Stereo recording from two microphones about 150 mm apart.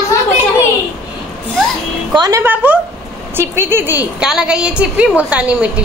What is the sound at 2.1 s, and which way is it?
Speech, 25° right (ahead or behind).